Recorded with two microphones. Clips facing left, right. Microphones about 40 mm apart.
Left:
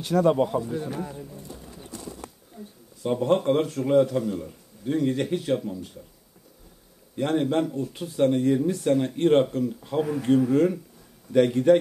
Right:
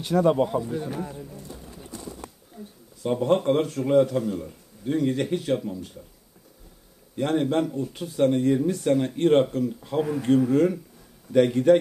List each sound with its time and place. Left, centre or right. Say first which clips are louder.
0.0 s speech: even; centre
1.9 s bird: even; right
2.5 s speech: even; centre
7.2 s speech: even; centre